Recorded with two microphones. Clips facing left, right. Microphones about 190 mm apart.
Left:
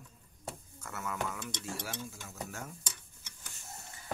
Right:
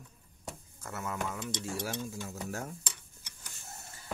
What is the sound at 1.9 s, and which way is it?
Speech, 40° right (ahead or behind).